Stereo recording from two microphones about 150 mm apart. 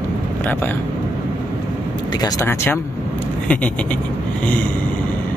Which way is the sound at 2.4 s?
15° left (ahead or behind).